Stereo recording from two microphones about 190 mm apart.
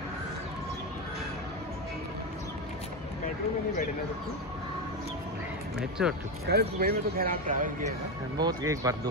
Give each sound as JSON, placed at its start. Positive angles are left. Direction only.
{"t": 5.8, "sound": "speech", "side_deg": -5}
{"t": 6.4, "sound": "speech", "side_deg": -55}
{"t": 8.4, "sound": "speech", "side_deg": -20}